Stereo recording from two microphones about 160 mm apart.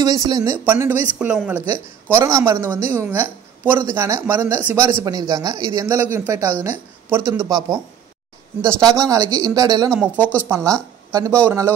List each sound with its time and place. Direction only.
0.0 s speech: 25° right (ahead or behind)
0.7 s a woman's voice: 10° right (ahead or behind)
2.0 s a woman's voice: 15° right (ahead or behind)
10.1 s speech: 10° left (ahead or behind)
10.5 s a woman's voice: 20° right (ahead or behind)